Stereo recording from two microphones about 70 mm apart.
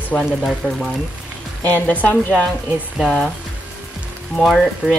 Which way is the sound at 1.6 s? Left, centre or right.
Left.